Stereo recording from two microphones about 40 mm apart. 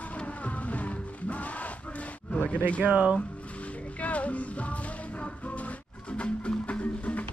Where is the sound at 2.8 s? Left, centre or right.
Right.